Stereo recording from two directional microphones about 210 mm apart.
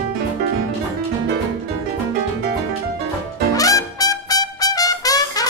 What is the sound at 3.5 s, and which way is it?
Trumpet, 15° left (ahead or behind).